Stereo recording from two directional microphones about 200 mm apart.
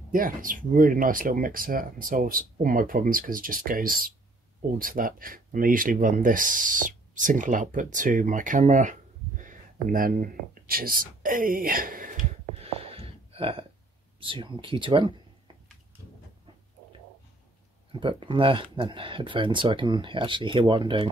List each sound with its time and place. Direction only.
0.1 s speech: 45° right (ahead or behind)
9.4 s a sound: 40° right (ahead or behind)
14.2 s speech: 25° right (ahead or behind)
17.9 s speech: 25° right (ahead or behind)